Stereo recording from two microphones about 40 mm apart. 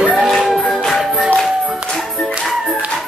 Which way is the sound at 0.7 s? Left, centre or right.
Centre.